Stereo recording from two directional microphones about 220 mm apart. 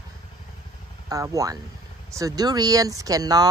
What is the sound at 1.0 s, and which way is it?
Speech, 15° right (ahead or behind).